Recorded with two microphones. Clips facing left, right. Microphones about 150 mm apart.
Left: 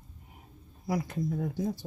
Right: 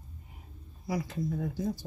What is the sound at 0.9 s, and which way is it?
Speech, 50° left (ahead or behind).